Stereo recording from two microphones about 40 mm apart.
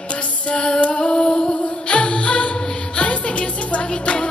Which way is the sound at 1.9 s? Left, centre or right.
Left.